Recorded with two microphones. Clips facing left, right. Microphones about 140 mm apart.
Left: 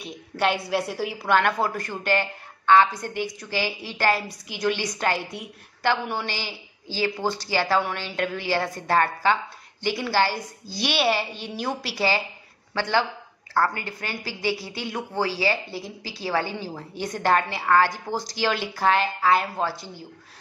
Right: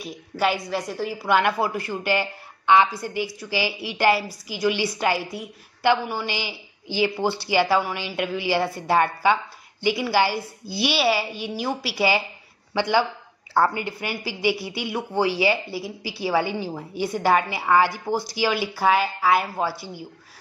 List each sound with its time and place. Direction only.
0.0 s a woman's voice: 5° right (ahead or behind)
6.3 s speech: 15° right (ahead or behind)